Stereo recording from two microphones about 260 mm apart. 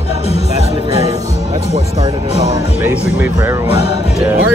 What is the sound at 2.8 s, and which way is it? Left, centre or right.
Speech, centre.